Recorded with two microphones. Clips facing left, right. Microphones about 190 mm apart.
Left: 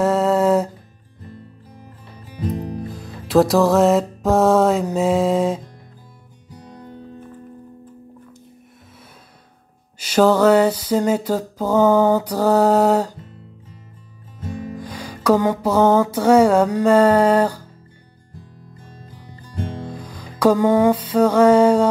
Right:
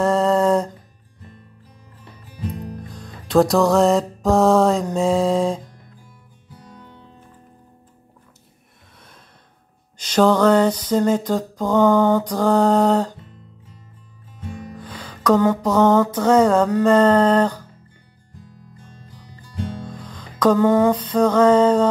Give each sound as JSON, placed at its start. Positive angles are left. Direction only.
{"t": 0.0, "sound": "music", "side_deg": 5}
{"t": 2.9, "sound": "music", "side_deg": 5}
{"t": 6.7, "sound": "music", "side_deg": 40}
{"t": 9.9, "sound": "music", "side_deg": 5}
{"t": 14.8, "sound": "music", "side_deg": 10}
{"t": 19.9, "sound": "music", "side_deg": 10}